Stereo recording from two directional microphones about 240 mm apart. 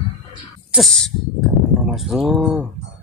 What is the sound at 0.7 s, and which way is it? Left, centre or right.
Speech, centre.